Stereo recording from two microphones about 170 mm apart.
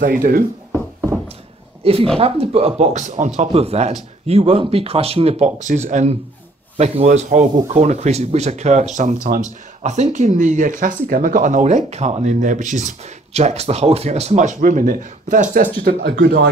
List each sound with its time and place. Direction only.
0.0 s speech: 55° right (ahead or behind)
2.1 s speech: 35° right (ahead or behind); by 16.4 s 75° right (ahead or behind)